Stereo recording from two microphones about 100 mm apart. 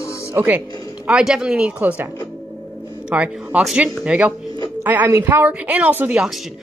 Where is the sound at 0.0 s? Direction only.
30° left (ahead or behind).